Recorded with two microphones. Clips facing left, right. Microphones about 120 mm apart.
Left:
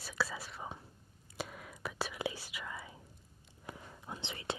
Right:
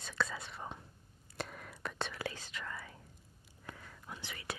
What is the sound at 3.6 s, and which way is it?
Whispering, 20° left (ahead or behind).